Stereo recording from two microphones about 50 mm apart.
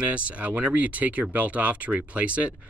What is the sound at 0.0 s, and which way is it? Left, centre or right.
Speech, right.